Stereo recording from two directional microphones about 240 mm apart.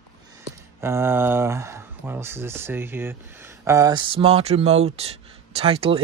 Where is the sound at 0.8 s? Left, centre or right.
Centre.